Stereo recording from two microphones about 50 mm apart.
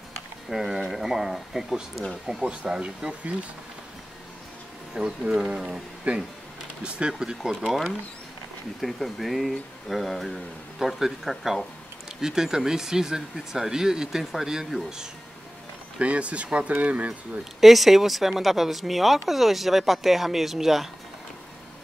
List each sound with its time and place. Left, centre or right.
0.5 s speech: centre
2.2 s speech: centre
4.9 s speech: centre
8.8 s speech: centre
16.0 s speech: right
17.6 s speech: centre